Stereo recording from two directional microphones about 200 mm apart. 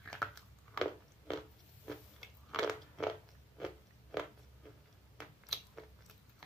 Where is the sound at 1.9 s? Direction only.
Centre (ahead or behind).